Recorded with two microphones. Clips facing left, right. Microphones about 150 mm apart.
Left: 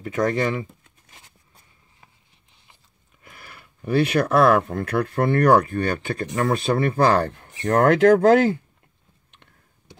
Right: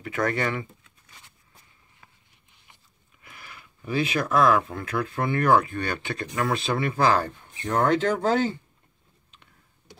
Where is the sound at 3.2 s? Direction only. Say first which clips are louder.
Left 1 dB; 45° left (ahead or behind); by 7.6 s 75° left (ahead or behind).